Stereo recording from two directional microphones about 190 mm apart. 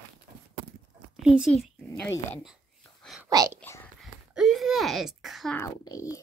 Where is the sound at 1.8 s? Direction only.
10° left (ahead or behind).